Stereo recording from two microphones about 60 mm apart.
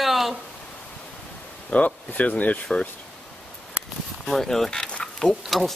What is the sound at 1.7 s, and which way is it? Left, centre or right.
Speech, left.